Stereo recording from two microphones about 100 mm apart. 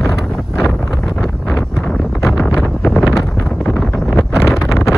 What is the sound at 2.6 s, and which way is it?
Wind noise, 5° left (ahead or behind).